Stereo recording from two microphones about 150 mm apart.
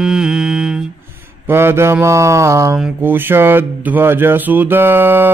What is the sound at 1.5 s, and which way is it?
Mantra, 15° right (ahead or behind).